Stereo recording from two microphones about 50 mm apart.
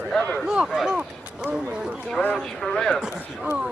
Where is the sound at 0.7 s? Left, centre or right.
Centre.